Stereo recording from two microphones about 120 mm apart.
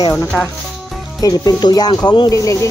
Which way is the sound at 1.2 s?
30° left (ahead or behind).